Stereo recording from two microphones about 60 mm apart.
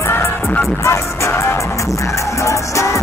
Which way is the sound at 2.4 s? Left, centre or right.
Left.